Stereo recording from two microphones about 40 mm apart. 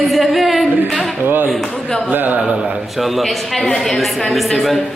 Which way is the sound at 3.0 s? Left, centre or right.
Centre.